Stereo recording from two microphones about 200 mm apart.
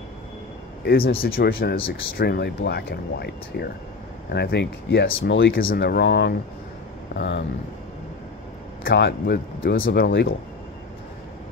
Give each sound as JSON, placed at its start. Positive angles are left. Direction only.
{"t": 0.8, "sound": "speech", "side_deg": 50}
{"t": 8.8, "sound": "speech", "side_deg": 55}
{"t": 9.8, "sound": "speech", "side_deg": 65}